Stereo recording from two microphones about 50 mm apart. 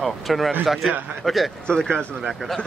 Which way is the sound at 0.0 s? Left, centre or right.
Centre.